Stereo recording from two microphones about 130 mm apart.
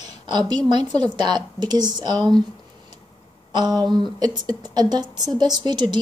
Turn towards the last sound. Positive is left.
turn(degrees=-35)  # may be behind; listen again after turning